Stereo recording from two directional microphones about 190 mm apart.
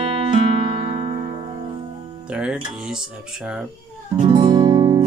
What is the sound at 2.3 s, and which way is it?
Music, 5° right (ahead or behind).